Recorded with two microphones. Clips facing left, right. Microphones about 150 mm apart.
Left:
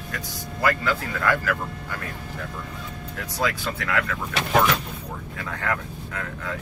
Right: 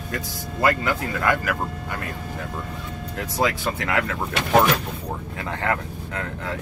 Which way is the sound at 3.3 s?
25° right (ahead or behind).